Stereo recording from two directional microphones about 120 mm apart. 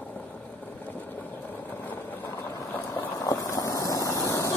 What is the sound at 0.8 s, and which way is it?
Vehicle, 15° left (ahead or behind).